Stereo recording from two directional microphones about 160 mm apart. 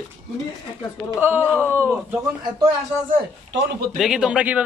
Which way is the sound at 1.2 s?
15° right (ahead or behind).